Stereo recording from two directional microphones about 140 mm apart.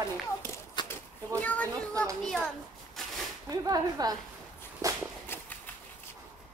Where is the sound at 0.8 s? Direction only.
30° left (ahead or behind).